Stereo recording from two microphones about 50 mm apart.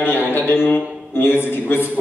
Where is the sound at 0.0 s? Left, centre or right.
Left.